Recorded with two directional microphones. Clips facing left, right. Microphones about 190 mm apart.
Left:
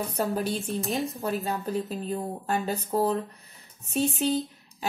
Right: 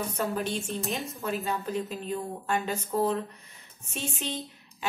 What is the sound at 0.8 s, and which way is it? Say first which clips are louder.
Speech: left 4 dB; centre (ahead or behind).